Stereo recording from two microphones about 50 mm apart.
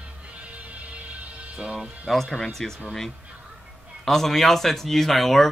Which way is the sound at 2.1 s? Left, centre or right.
Centre.